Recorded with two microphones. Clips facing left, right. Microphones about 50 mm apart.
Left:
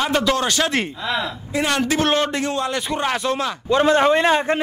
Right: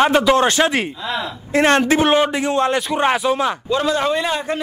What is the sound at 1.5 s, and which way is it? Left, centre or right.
Speech, right.